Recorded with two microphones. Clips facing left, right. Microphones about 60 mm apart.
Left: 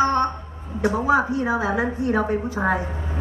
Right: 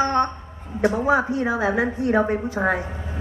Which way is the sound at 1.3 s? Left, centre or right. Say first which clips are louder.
Right 1 dB; right.